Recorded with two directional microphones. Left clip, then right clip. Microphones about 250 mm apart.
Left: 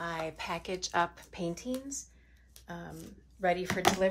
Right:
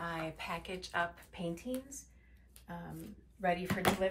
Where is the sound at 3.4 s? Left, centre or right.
Left.